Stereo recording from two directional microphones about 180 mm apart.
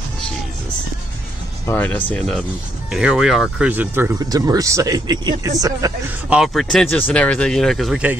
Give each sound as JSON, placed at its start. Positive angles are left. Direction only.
{"t": 1.7, "sound": "speech", "side_deg": 10}
{"t": 6.3, "sound": "speech", "side_deg": 0}